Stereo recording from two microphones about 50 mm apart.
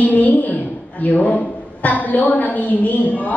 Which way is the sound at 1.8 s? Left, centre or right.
Left.